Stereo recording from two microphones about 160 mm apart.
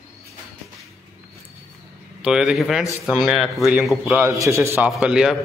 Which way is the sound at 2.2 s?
5° right (ahead or behind).